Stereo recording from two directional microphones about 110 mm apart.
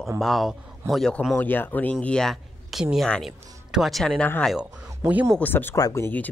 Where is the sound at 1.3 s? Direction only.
20° left (ahead or behind).